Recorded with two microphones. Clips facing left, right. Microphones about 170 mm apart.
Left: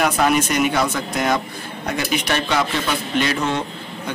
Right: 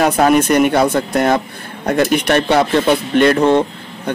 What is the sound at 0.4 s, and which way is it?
A man's voice, 55° right (ahead or behind).